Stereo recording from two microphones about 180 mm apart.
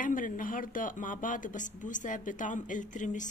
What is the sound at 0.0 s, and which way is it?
A woman's voice, 50° left (ahead or behind).